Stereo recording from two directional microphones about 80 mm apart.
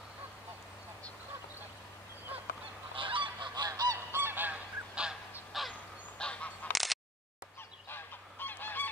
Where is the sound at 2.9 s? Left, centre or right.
Right.